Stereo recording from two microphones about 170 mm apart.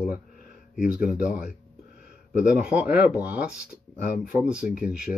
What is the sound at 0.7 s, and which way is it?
Speech, 50° left (ahead or behind).